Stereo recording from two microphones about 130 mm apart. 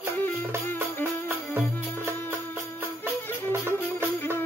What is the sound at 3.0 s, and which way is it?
Music, 20° right (ahead or behind).